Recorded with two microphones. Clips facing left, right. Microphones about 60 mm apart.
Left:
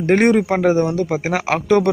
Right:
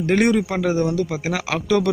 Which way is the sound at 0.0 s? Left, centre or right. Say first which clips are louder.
Left 4 dB; left.